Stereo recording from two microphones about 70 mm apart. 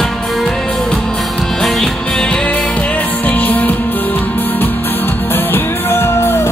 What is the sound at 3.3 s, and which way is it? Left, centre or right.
Music, left.